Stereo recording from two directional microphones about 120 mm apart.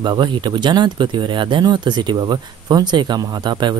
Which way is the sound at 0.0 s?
40° right (ahead or behind).